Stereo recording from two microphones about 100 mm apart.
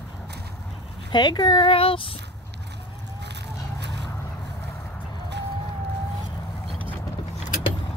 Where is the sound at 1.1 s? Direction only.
45° left (ahead or behind).